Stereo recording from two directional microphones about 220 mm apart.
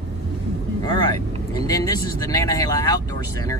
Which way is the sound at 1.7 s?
15° left (ahead or behind).